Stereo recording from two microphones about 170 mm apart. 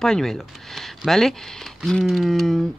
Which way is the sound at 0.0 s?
5° left (ahead or behind).